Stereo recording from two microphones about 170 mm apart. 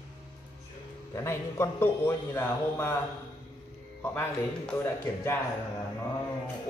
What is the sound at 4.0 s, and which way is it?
A man's voice, 15° left (ahead or behind).